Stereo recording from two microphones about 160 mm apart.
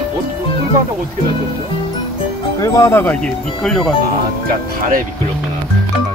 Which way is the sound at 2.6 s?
20° left (ahead or behind).